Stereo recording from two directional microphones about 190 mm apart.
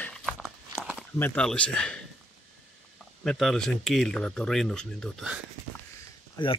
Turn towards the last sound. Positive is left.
turn(degrees=25)  # may be behind; listen again after turning